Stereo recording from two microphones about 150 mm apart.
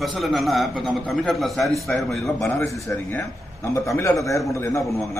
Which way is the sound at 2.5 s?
20° left (ahead or behind).